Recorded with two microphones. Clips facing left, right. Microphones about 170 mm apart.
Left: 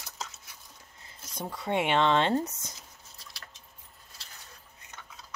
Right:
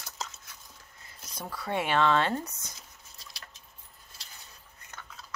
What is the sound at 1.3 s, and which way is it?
Speech, 20° left (ahead or behind).